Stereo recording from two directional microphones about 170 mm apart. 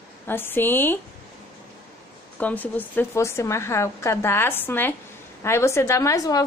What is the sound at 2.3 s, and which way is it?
A woman's voice, 10° left (ahead or behind).